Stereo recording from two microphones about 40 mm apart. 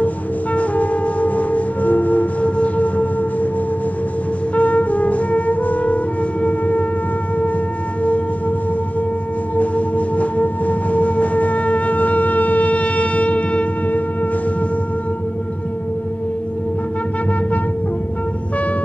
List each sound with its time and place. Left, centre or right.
0.0 s music: left
4.6 s music: left
6.4 s wind instrument: left
8.0 s music: left
9.6 s music: left